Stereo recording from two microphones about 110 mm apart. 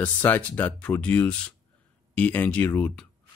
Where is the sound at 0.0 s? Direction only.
15° left (ahead or behind).